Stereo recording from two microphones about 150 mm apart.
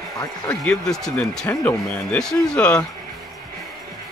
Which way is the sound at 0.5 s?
5° left (ahead or behind).